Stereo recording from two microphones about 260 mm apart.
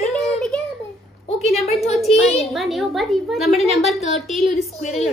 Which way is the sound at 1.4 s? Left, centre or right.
Left.